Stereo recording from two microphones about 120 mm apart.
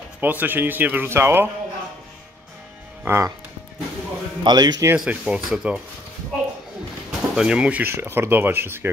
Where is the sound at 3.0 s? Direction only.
20° right (ahead or behind).